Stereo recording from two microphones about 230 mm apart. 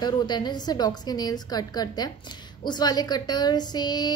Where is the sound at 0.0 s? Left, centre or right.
Centre.